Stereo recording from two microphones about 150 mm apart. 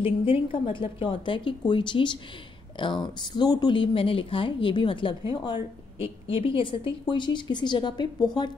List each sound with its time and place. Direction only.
0.0 s speech: 35° left (ahead or behind)